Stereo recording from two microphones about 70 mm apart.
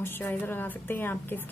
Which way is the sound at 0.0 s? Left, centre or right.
Left.